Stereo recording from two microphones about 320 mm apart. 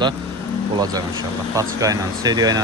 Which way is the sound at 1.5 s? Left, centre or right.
Centre.